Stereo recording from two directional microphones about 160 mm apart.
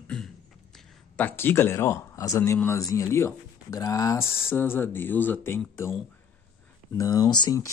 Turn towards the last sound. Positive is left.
turn(degrees=25)  # may be behind; listen again after turning